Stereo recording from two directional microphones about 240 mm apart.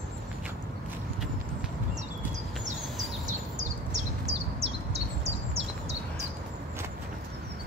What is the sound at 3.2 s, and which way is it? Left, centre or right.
Bird, right.